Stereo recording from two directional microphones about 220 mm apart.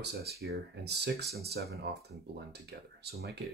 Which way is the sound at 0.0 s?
45° right (ahead or behind).